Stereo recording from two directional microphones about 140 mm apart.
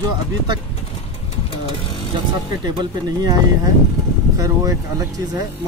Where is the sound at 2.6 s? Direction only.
30° right (ahead or behind).